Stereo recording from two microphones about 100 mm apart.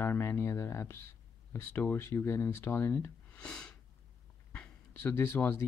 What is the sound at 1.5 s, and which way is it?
Speech, 20° left (ahead or behind).